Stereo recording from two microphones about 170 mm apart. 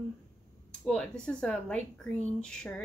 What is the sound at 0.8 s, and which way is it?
Speech, 5° left (ahead or behind).